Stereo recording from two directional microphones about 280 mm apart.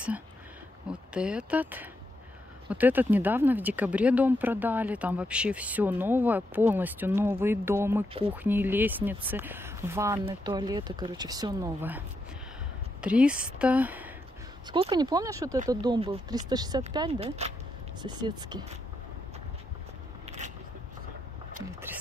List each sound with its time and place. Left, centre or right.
1.1 s speech: centre
13.0 s speech: centre
20.2 s a sound: right